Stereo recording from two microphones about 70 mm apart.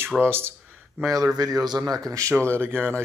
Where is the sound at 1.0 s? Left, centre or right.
Right.